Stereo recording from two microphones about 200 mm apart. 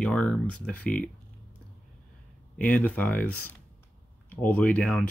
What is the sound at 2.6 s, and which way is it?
Speech, 5° left (ahead or behind).